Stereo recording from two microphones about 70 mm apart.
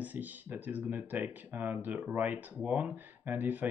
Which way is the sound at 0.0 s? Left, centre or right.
Right.